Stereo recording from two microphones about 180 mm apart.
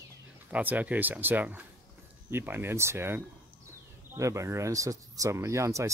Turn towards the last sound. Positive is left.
turn(degrees=-15)  # may be behind; listen again after turning